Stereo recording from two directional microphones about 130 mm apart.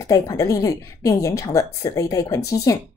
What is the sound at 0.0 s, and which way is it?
A woman's voice, 25° left (ahead or behind).